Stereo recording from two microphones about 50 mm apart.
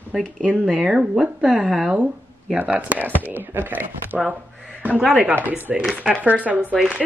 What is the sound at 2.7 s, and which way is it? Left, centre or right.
Speech, right.